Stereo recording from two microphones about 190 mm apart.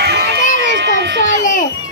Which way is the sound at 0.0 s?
60° right (ahead or behind).